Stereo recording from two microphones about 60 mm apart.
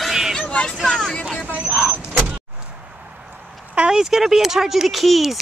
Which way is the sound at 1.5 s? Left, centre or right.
Right.